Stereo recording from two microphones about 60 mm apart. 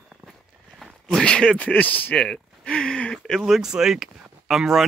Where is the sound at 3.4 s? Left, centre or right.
Centre.